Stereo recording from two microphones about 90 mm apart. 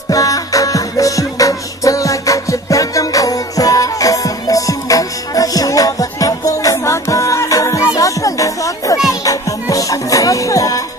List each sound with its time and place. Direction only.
0.1 s music: 40° left (ahead or behind)